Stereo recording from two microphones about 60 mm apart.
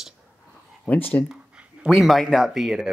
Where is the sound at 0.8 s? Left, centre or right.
Left.